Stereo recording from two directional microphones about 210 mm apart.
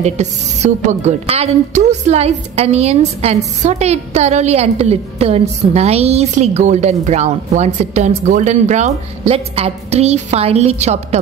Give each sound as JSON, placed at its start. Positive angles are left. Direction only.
{"t": 0.0, "sound": "a woman's voice", "side_deg": -35}